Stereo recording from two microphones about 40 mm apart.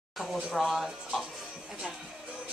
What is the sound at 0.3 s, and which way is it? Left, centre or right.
Speech, centre.